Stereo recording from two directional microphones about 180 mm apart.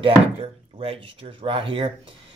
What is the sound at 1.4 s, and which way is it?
Speech, 30° right (ahead or behind).